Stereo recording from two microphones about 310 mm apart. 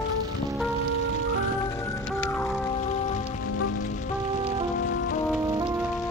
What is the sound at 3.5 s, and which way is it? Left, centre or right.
Music, left.